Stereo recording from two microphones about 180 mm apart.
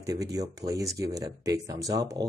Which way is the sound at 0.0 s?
20° right (ahead or behind).